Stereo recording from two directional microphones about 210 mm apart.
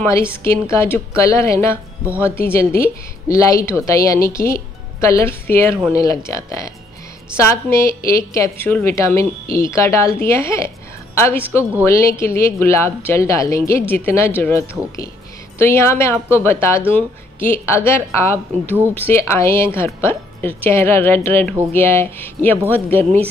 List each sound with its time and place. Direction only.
0.0 s a woman's voice: 10° left (ahead or behind)